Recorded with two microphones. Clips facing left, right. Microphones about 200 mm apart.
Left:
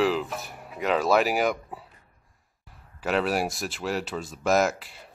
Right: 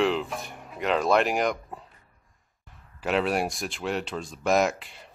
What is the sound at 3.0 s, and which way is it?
Speech, centre (ahead or behind).